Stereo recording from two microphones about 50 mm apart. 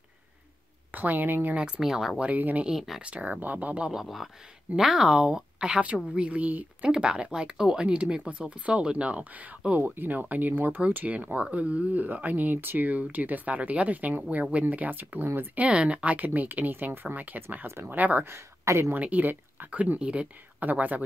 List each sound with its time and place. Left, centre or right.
0.9 s speech: right
1.8 s speech: centre
2.3 s speech: right
4.0 s speech: centre; by 6.9 s right
6.9 s speech: centre; by 15.2 s right
15.5 s speech: right
18.2 s speech: right
18.9 s speech: right
20.0 s speech: right
20.6 s speech: right